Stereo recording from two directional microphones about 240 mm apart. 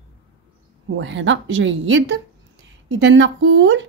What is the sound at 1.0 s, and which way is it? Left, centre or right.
Speech, right.